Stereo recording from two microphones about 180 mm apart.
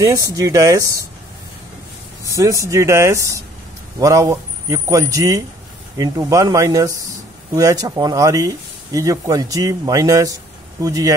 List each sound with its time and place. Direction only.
0.0 s speech: 20° right (ahead or behind)
2.3 s speech: 15° right (ahead or behind)